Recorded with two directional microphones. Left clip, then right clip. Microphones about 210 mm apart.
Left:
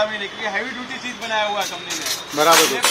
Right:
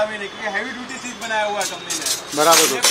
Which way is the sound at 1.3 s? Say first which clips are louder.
Even; 10° right (ahead or behind).